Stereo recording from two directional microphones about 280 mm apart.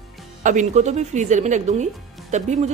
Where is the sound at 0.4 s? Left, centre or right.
Right.